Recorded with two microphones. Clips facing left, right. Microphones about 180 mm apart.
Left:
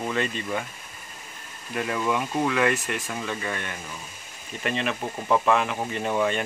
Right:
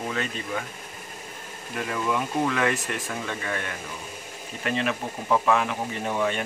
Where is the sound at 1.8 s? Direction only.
5° left (ahead or behind).